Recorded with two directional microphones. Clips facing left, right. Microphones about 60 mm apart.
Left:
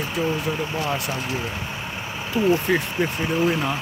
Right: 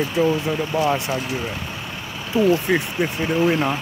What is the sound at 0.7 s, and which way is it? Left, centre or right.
Speech, right.